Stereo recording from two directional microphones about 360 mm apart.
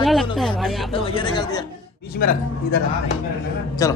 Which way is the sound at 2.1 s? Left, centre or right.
Left.